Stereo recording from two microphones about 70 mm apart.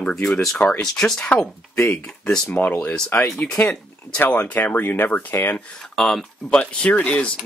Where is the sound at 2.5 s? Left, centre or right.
Left.